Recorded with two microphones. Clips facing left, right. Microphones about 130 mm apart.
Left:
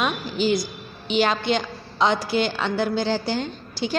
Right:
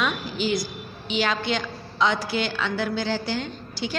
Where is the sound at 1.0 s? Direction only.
50° left (ahead or behind).